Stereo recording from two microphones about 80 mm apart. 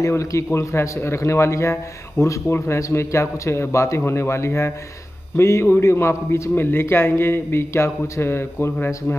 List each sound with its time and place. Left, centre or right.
0.0 s a man's voice: left